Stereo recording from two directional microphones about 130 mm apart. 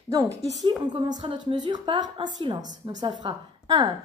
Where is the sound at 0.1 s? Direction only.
30° right (ahead or behind).